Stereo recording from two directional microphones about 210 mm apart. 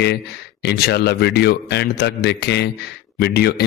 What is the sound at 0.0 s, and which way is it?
Speech, 50° left (ahead or behind).